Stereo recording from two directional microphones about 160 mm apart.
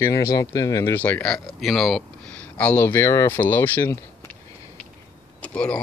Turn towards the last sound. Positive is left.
turn(degrees=10)  # may be behind; listen again after turning